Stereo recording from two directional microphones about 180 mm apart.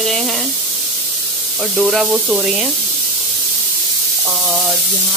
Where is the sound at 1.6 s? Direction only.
Centre (ahead or behind).